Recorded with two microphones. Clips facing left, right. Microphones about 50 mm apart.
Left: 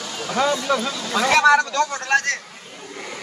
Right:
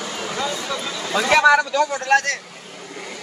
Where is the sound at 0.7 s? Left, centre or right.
Left.